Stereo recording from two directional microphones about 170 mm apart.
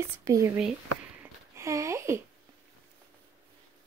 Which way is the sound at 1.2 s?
15° right (ahead or behind).